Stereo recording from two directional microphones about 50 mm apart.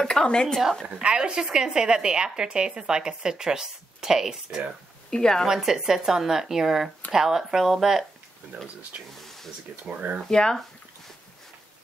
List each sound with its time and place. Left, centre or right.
0.0 s speech: centre
1.0 s a woman's voice: centre
5.1 s a woman's voice: centre
5.5 s a woman's voice: centre
9.2 s a sound: centre
9.8 s speech: right
10.2 s a woman's voice: centre